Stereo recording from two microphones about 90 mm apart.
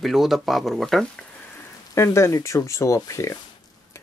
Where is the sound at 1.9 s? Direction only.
30° left (ahead or behind).